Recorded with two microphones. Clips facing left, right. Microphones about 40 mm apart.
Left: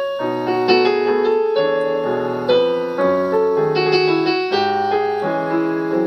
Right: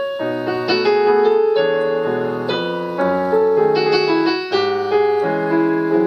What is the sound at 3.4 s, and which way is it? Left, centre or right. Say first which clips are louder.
Music: right 2 dB; centre.